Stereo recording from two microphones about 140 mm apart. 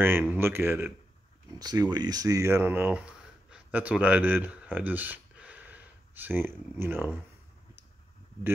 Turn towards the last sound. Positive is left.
turn(degrees=-15)  # may be behind; listen again after turning